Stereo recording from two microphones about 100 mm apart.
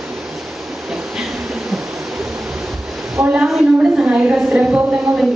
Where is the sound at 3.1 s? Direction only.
20° right (ahead or behind).